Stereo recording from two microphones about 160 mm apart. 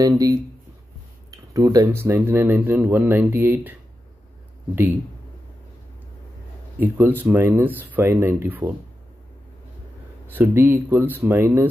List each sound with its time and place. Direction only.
0.0 s speech: 20° right (ahead or behind)
6.8 s speech: 10° right (ahead or behind)
10.3 s speech: 15° right (ahead or behind)